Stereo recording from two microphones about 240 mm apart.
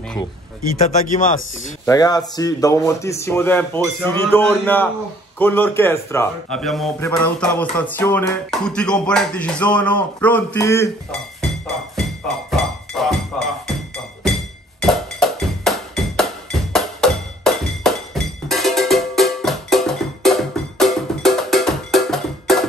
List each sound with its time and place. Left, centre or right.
1.0 s speech: left
1.9 s a man's voice: centre
11.6 s music: centre